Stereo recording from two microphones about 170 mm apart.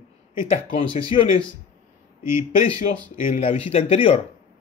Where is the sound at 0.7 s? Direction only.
30° left (ahead or behind).